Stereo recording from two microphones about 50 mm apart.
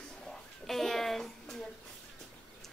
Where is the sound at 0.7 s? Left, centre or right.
Centre.